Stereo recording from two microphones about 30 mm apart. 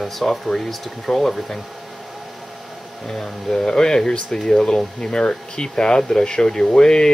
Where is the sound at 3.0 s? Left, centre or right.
Centre.